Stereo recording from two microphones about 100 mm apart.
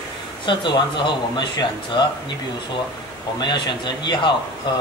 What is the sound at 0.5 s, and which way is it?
Speech, 50° left (ahead or behind).